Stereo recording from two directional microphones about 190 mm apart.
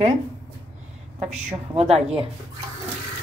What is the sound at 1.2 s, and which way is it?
Speech, 35° right (ahead or behind).